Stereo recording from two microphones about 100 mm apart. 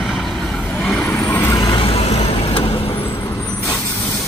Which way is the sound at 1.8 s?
80° left.